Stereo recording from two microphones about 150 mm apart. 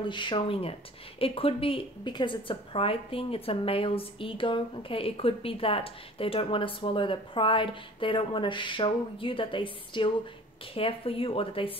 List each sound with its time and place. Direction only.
0.0 s a woman's voice: 35° left (ahead or behind)